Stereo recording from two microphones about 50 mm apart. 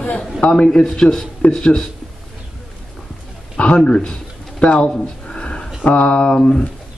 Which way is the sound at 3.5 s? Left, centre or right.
Left.